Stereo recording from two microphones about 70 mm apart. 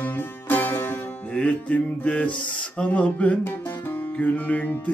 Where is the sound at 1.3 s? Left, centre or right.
Centre.